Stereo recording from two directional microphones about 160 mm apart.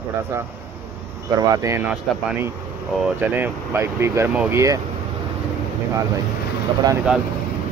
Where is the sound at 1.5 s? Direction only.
20° right (ahead or behind).